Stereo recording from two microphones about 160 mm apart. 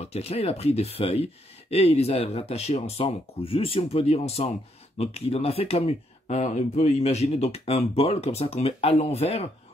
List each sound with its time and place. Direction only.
0.0 s speech: 40° left (ahead or behind)